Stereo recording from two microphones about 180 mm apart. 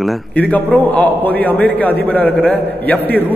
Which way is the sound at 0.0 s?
10° left (ahead or behind).